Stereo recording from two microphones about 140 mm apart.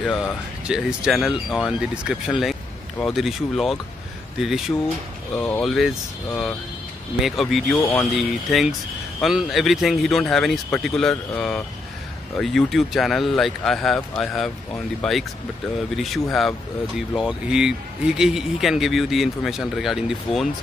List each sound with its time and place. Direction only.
0.0 s speech: centre (ahead or behind)